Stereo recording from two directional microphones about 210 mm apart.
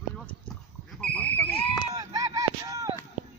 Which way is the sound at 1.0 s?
5° left (ahead or behind).